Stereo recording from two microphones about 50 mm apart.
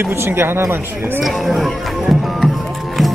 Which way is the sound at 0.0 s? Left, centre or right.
Right.